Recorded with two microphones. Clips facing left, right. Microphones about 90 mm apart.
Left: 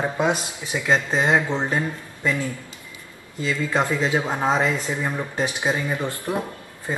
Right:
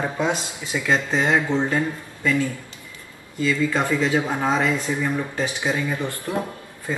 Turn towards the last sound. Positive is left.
turn(degrees=20)  # may be behind; listen again after turning